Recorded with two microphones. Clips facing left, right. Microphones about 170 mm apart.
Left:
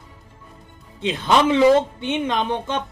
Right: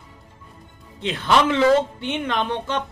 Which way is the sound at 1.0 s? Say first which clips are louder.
Left 1 dB; 15° left (ahead or behind).